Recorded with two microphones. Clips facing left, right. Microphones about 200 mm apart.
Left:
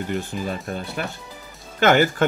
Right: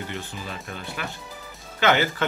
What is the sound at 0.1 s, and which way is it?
Speech, 45° left (ahead or behind).